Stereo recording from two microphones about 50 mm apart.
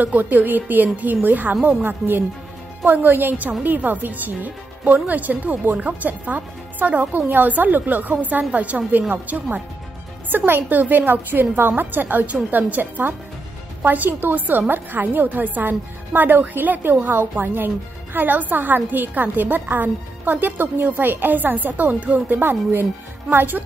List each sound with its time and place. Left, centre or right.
0.0 s a woman's voice: right
22.4 s speech: right